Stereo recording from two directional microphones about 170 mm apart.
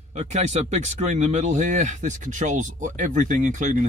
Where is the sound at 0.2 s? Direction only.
40° right (ahead or behind).